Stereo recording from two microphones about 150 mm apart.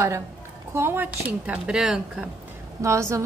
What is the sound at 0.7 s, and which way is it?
Speech, 15° right (ahead or behind).